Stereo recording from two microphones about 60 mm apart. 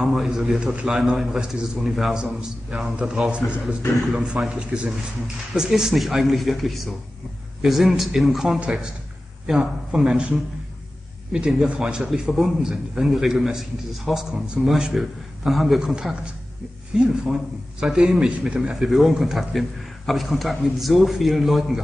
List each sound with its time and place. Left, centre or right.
0.0 s a man's voice: centre
8.5 s speech: centre
11.3 s a man's voice: centre